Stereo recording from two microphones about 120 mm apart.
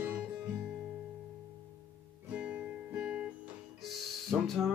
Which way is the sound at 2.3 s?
15° right (ahead or behind).